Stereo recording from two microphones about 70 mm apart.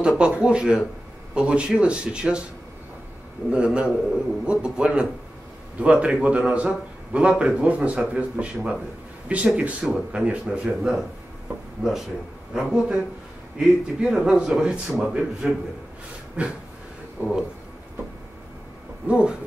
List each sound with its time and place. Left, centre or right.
0.0 s a man's voice: centre
3.5 s a man's voice: centre
19.0 s a man's voice: centre